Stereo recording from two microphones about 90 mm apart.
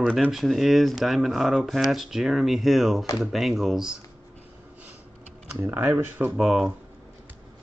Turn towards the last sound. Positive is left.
turn(degrees=-5)  # may be behind; listen again after turning